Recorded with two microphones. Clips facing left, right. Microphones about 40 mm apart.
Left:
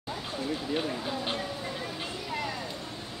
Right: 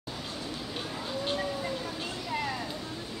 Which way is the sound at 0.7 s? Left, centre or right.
Centre.